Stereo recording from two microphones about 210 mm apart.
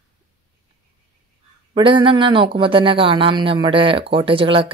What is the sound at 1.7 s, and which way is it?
Speech, 25° right (ahead or behind).